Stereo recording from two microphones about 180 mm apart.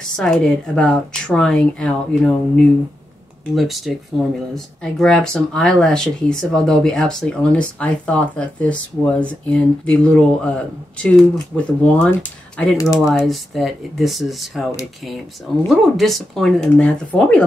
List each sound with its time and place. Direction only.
0.0 s speech: 5° left (ahead or behind)
3.5 s speech: centre (ahead or behind)
15.7 s speech: centre (ahead or behind)